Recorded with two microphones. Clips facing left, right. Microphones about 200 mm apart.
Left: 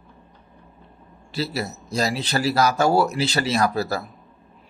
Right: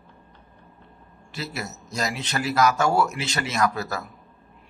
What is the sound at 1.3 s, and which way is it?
Speech, 30° left (ahead or behind).